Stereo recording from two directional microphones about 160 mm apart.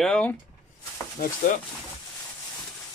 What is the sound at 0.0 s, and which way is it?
Speech, 5° left (ahead or behind).